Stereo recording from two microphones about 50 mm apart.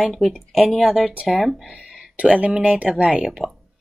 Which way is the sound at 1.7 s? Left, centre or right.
Centre.